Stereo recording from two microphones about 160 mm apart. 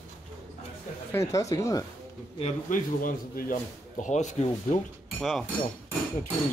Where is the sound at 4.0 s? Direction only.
50° left (ahead or behind).